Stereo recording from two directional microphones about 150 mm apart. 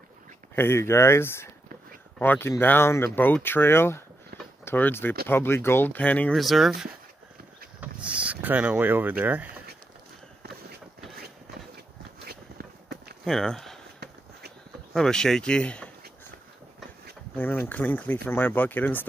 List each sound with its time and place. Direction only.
0.6 s speech: 15° left (ahead or behind); by 9.5 s 10° right (ahead or behind)
12.3 s a sound: 90° right
13.2 s speech: 5° left (ahead or behind)
13.9 s a sound: 90° right
15.0 s speech: 5° left (ahead or behind)
17.4 s speech: 10° left (ahead or behind)